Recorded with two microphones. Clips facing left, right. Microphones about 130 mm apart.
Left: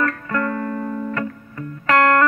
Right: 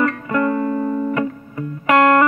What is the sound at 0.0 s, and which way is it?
Music, 15° right (ahead or behind).